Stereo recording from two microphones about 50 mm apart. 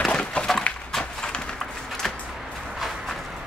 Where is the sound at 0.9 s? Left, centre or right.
Centre.